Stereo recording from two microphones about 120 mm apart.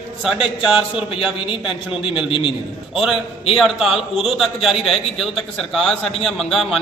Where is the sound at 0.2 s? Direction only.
5° right (ahead or behind).